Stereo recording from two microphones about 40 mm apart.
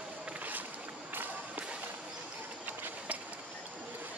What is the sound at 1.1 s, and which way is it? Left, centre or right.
Music, right.